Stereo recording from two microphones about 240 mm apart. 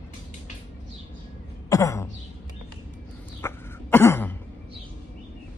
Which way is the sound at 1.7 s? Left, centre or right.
Centre.